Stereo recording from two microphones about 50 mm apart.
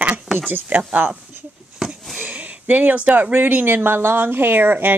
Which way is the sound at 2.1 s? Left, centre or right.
Right.